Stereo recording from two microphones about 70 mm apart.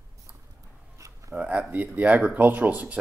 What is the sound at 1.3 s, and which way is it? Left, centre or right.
Speech, centre.